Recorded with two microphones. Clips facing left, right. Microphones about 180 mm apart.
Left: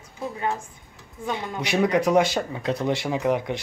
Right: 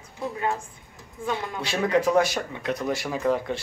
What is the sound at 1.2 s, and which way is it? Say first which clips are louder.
Speech: even; 15° left (ahead or behind).